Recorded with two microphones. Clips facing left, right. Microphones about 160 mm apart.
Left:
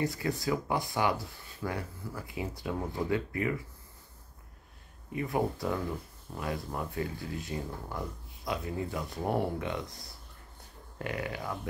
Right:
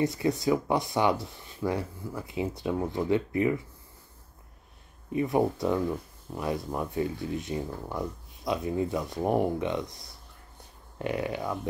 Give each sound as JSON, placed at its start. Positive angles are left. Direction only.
{"t": 0.0, "sound": "speech", "side_deg": -20}
{"t": 5.1, "sound": "speech", "side_deg": -20}
{"t": 11.0, "sound": "speech", "side_deg": -25}